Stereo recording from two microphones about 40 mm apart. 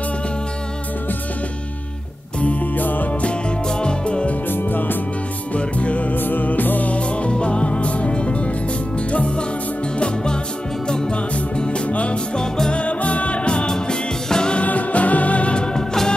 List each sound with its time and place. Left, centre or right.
2.4 s music: left
3.3 s music: left
4.5 s music: left
5.5 s music: left
6.1 s music: left
6.9 s music: left
9.9 s music: left
12.4 s music: centre
12.8 s music: left
14.6 s music: left; by 16.2 s centre